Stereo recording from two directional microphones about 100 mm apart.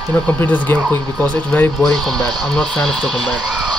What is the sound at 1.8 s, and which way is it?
Speech, centre (ahead or behind).